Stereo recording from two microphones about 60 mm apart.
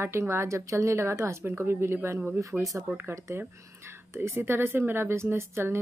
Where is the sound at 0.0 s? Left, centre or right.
Right.